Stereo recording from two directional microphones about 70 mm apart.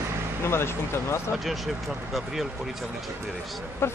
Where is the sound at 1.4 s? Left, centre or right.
Centre.